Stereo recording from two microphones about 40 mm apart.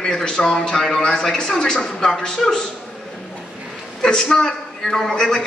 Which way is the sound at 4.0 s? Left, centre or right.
Centre.